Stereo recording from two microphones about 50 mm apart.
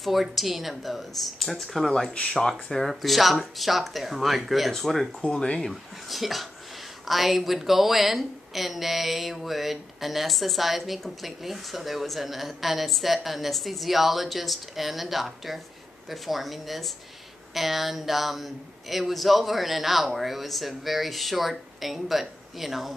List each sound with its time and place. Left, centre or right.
0.0 s a woman's voice: centre
5.2 s speech: left
5.6 s a woman's voice: centre